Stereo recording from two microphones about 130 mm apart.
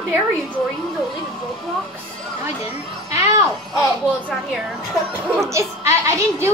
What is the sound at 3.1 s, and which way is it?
Music, 25° right (ahead or behind).